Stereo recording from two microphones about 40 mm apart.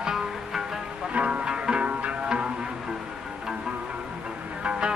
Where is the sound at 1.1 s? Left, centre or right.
Right.